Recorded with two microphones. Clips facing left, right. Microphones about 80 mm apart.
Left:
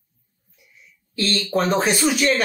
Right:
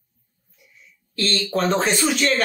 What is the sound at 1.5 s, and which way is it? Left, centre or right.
Speech, centre.